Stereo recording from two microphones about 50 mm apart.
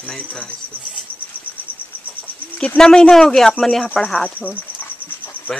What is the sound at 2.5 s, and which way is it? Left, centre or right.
Speech, centre.